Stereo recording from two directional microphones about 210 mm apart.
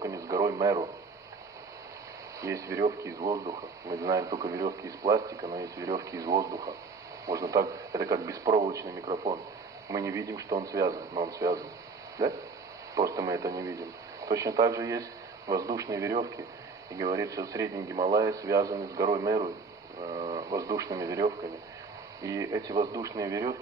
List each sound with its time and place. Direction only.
0.0 s radio: 15° right (ahead or behind)
2.4 s speech: 15° right (ahead or behind)
8.5 s speech: 35° right (ahead or behind)
8.7 s speech: 15° right (ahead or behind)
9.8 s speech: 15° right (ahead or behind)
12.9 s speech: 15° right (ahead or behind)